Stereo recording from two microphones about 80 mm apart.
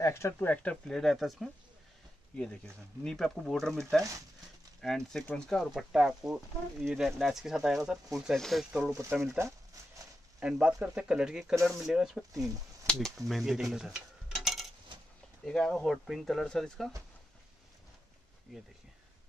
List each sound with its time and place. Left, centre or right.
0.0 s speech: left
0.5 s speech: centre
0.8 s speech: centre
2.3 s speech: centre
4.8 s speech: centre
5.6 s speech: centre
8.7 s speech: centre
10.4 s speech: centre
12.8 s speech: centre